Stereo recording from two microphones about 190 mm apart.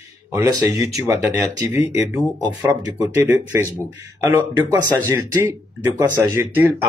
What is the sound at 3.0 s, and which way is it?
Speech, 10° right (ahead or behind).